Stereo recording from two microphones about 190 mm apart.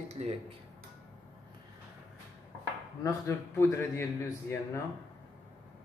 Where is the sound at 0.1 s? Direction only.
35° right (ahead or behind).